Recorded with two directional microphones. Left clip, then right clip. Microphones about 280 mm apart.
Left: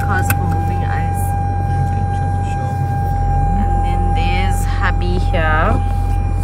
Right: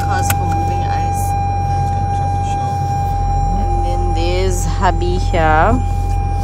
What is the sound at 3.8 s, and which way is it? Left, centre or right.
Music, centre.